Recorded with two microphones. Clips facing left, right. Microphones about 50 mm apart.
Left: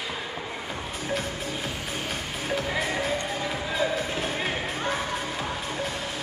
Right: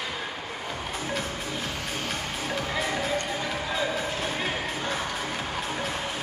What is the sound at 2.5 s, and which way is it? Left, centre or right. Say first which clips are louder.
Music: left 2 dB; centre.